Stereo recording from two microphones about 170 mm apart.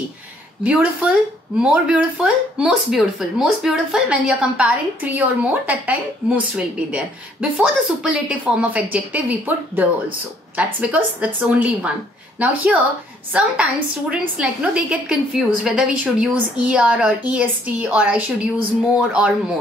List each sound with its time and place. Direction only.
0.7 s speech: 5° right (ahead or behind)